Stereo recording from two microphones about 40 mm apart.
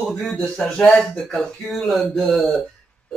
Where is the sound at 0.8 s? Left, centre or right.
Centre.